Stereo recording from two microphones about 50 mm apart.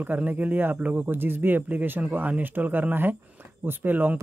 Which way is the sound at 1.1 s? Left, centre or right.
Right.